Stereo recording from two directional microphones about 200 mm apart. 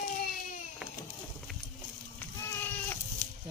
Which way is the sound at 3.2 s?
15° right (ahead or behind).